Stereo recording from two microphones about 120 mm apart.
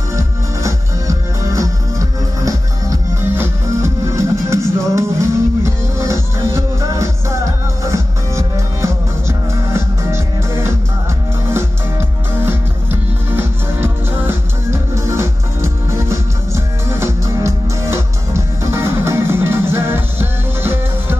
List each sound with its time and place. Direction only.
0.1 s music: 25° right (ahead or behind)